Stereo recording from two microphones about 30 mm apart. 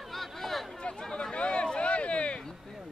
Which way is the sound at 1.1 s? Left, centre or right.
Left.